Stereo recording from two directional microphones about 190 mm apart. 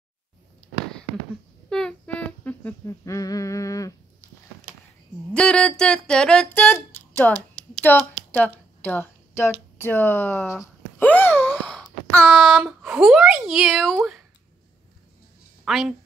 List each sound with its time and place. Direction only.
1.7 s humming: 5° left (ahead or behind)
5.3 s a sound: 5° left (ahead or behind)
9.8 s speech: 10° left (ahead or behind)
15.6 s a woman's voice: centre (ahead or behind)